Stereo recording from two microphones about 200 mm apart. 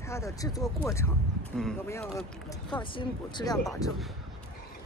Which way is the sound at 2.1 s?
Centre (ahead or behind).